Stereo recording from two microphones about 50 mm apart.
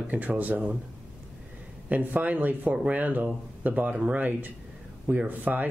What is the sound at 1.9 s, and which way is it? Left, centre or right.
Speech, right.